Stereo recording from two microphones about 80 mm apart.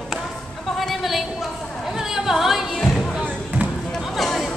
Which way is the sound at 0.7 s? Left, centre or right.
Centre.